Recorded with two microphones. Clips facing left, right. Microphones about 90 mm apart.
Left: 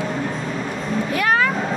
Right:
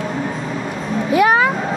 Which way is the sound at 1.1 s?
15° right (ahead or behind).